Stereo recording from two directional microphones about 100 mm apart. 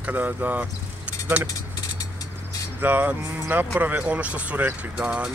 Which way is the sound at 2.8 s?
20° right (ahead or behind).